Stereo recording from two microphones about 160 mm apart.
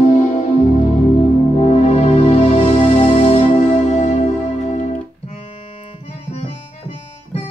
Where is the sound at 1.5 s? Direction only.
40° left (ahead or behind).